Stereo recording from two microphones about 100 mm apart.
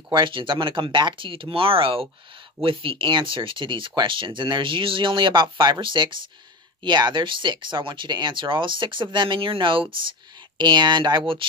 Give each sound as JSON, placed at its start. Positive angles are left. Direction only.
{"t": 0.1, "sound": "speech", "side_deg": -55}
{"t": 10.6, "sound": "speech", "side_deg": -50}